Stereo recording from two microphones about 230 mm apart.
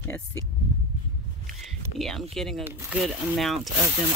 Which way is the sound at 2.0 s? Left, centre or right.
Centre.